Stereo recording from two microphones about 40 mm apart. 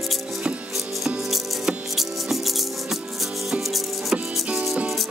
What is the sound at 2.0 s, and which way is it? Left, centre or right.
Music, centre.